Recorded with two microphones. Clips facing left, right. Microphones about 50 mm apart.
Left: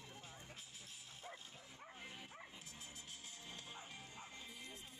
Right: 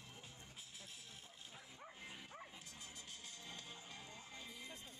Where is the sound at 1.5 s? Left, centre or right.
Centre.